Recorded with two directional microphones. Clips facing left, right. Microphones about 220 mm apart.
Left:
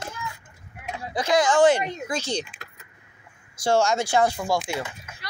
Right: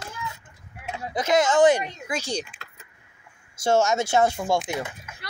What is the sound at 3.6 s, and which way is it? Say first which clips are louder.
Speech: even; 20° right (ahead or behind).